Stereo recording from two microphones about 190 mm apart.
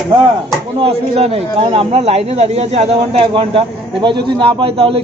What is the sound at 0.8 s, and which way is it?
A man's voice, 30° right (ahead or behind).